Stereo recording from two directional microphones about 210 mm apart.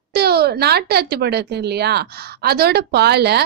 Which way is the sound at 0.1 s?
50° right (ahead or behind).